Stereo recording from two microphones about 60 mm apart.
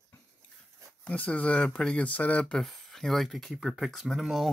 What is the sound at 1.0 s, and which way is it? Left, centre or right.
Speech, left.